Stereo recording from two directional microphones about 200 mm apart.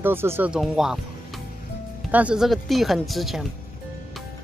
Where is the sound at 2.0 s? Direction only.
5° right (ahead or behind).